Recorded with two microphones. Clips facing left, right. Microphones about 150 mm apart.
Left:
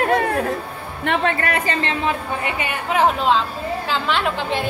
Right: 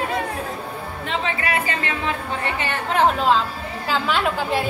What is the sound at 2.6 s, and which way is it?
Speech, 10° left (ahead or behind).